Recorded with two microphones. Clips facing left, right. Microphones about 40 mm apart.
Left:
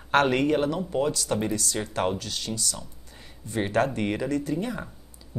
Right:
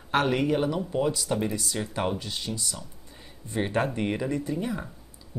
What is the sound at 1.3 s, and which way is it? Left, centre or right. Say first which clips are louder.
Speech: left 1 dB; centre.